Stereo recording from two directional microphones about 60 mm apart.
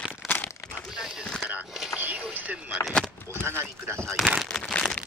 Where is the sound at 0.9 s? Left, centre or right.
Centre.